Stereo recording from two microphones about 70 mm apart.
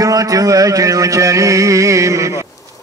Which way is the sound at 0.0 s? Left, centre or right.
Right.